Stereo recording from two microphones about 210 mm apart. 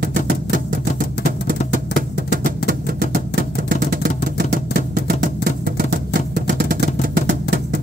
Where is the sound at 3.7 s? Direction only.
40° right (ahead or behind).